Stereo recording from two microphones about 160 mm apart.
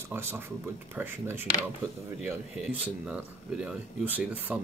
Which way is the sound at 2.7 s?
5° right (ahead or behind).